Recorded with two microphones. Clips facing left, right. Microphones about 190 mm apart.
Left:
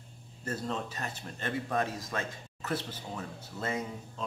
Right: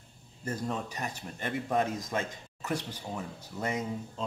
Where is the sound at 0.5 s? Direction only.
15° right (ahead or behind).